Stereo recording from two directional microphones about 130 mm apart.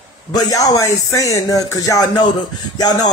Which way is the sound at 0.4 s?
30° left (ahead or behind).